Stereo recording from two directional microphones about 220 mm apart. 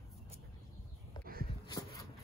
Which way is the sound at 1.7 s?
15° left (ahead or behind).